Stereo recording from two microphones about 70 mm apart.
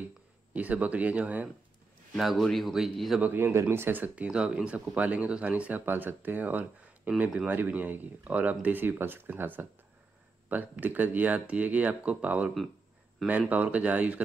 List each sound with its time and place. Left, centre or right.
0.5 s speech: right
2.1 s a man's voice: centre
3.2 s speech: right
13.5 s speech: right